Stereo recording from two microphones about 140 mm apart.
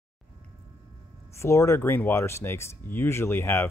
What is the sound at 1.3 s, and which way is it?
Speech, 20° left (ahead or behind).